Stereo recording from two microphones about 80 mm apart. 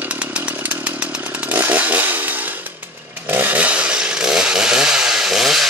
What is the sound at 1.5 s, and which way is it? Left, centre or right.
Chainsaw, right.